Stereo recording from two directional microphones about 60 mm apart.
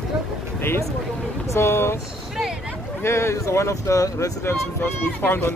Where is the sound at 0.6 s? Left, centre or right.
Left.